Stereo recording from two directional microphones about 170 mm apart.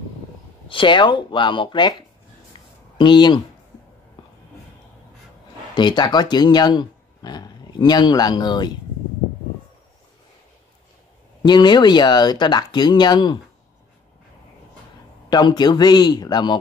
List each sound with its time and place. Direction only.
0.7 s speech: 30° left (ahead or behind)
5.8 s speech: 25° left (ahead or behind)
11.4 s speech: 25° left (ahead or behind)
15.2 s speech: 25° left (ahead or behind)